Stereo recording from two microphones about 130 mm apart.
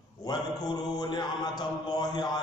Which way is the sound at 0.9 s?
30° left (ahead or behind).